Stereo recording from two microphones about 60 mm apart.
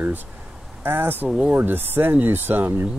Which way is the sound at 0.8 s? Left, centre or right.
Right.